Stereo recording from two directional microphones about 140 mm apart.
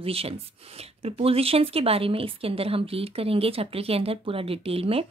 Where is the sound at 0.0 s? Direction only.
45° right (ahead or behind).